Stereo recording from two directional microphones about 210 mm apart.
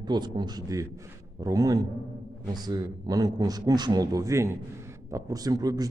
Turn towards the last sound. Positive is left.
turn(degrees=-20)  # may be behind; listen again after turning